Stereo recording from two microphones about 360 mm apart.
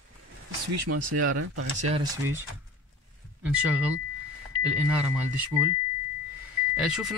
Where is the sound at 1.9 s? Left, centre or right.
Centre.